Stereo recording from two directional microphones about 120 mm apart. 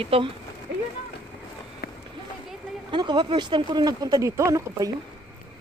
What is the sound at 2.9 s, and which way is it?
Speech, 40° right (ahead or behind).